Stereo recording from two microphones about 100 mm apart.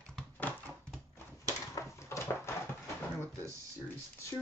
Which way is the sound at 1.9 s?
30° left (ahead or behind).